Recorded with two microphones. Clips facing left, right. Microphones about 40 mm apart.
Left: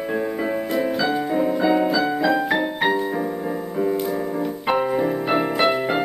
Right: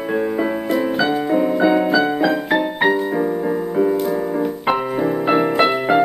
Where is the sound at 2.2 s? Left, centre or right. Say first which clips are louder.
Right 2 dB; centre.